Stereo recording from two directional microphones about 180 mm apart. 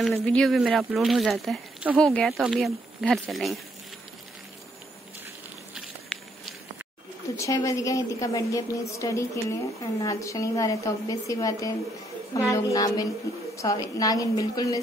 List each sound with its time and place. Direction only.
0.0 s speech: 5° left (ahead or behind)
6.1 s walk: 5° left (ahead or behind)
7.3 s a woman's voice: 15° left (ahead or behind)